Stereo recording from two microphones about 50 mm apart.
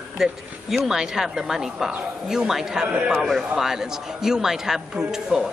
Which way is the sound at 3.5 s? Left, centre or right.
Centre.